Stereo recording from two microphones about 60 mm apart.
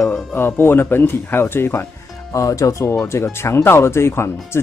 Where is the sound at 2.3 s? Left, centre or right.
Left.